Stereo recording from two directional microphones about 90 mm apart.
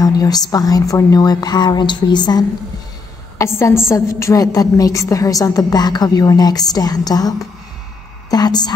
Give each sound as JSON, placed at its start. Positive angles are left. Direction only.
{"t": 0.0, "sound": "a woman's voice", "side_deg": 45}
{"t": 3.3, "sound": "a woman's voice", "side_deg": 30}